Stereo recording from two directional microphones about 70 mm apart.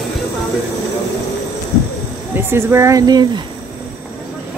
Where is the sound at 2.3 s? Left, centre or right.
Right.